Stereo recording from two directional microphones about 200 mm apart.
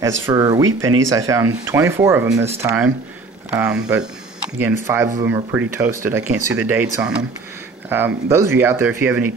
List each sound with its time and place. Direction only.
0.3 s speech: 20° right (ahead or behind)